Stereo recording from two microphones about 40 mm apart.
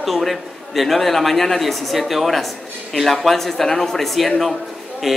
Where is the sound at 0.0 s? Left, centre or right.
Centre.